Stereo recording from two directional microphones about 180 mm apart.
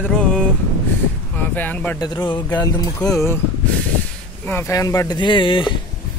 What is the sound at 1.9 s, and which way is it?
Speech, 20° left (ahead or behind).